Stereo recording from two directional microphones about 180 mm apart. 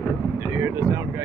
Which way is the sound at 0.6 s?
10° right (ahead or behind).